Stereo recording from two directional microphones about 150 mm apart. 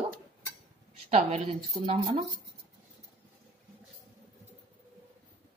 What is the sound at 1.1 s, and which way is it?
Speech, 45° right (ahead or behind).